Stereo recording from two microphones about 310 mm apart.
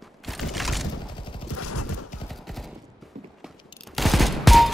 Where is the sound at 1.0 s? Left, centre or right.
Centre.